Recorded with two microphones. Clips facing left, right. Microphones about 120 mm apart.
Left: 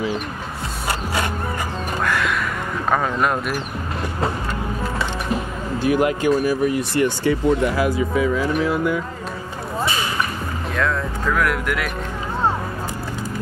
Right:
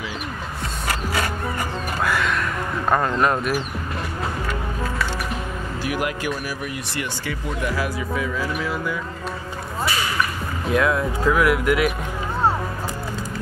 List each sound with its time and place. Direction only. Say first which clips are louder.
0.8 s music: left 1 dB; 25° left (ahead or behind)
2.0 s music: left 1 dB; centre (ahead or behind)
2.9 s speech: even; centre (ahead or behind)
5.9 s speech: left 8 dB; 25° left (ahead or behind)
10.7 s speech: right 4 dB; 10° right (ahead or behind)